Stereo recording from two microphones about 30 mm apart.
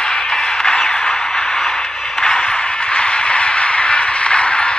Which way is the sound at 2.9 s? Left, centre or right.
Left.